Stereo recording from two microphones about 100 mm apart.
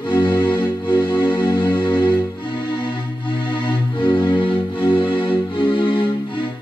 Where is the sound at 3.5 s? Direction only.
55° left (ahead or behind).